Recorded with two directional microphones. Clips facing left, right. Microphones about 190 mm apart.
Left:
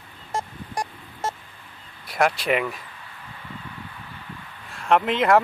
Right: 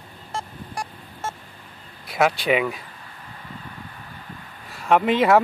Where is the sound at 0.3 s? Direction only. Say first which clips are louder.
Left 3 dB; 40° left (ahead or behind).